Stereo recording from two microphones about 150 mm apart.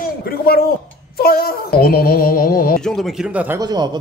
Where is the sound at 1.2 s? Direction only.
90° left; by 2.8 s 75° left (ahead or behind).